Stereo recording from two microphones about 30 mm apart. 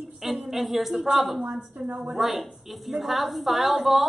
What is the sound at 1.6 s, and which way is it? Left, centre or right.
Speech, right.